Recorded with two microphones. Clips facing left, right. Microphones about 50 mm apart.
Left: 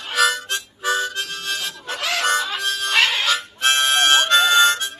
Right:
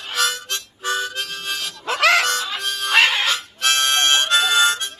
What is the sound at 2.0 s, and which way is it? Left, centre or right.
Harmonica, right.